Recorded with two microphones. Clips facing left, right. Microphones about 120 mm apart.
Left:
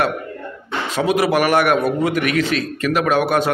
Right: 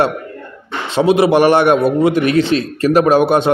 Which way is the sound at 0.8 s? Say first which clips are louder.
Right 6 dB; 30° right (ahead or behind).